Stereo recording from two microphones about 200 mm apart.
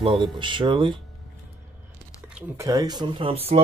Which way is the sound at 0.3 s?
25° right (ahead or behind).